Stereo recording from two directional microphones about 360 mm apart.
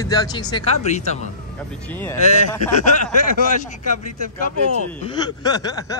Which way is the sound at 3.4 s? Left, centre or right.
Right.